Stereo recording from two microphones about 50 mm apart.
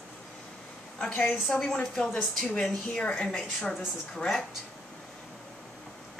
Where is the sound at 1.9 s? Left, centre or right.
Centre.